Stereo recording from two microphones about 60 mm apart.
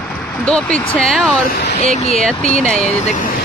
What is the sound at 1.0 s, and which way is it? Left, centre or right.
Speech, centre.